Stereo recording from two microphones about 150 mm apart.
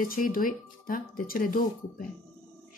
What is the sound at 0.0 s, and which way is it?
Speech, 70° left (ahead or behind).